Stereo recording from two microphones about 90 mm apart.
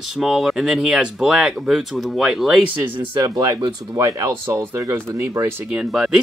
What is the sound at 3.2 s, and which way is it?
Speech, 40° right (ahead or behind).